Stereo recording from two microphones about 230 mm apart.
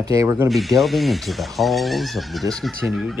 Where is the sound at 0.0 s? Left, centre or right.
Centre.